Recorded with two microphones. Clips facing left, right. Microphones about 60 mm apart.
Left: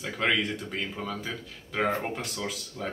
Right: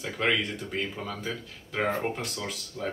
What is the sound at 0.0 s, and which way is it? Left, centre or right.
Speech, centre.